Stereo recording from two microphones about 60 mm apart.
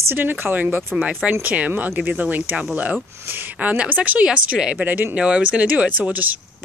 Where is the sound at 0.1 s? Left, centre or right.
Right.